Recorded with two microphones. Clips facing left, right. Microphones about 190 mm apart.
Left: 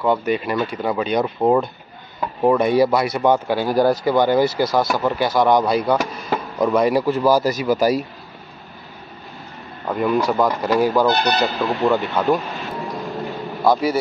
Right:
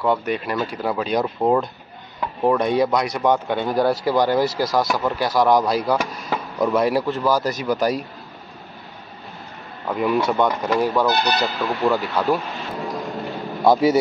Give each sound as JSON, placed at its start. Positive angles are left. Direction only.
{"t": 0.0, "sound": "speech", "side_deg": 0}
{"t": 7.2, "sound": "speech", "side_deg": 10}
{"t": 9.8, "sound": "speech", "side_deg": 0}
{"t": 11.1, "sound": "speech", "side_deg": 20}
{"t": 11.4, "sound": "speech", "side_deg": 0}
{"t": 12.9, "sound": "a sound", "side_deg": 0}